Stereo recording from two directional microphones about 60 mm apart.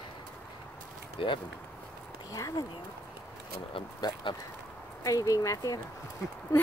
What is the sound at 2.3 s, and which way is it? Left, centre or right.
Speech, left.